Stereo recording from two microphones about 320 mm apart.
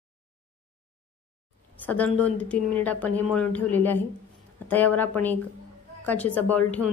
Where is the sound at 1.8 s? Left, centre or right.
Centre.